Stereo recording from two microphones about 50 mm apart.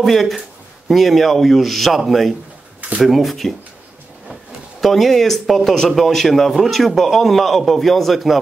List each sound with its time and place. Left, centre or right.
0.0 s speech: centre